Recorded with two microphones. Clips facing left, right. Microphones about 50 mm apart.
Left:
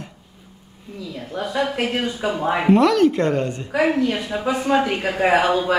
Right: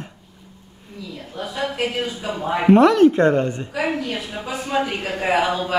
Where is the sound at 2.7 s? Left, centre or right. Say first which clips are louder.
Right 3 dB; right.